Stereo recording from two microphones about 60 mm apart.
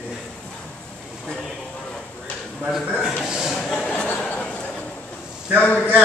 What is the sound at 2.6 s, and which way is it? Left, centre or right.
Speech, centre.